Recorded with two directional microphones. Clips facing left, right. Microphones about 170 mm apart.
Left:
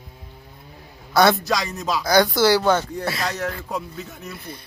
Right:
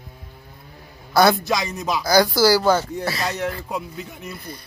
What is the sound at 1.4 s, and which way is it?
Speech, 20° right (ahead or behind).